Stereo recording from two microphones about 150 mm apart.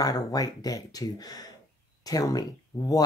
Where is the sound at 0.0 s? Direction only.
25° left (ahead or behind).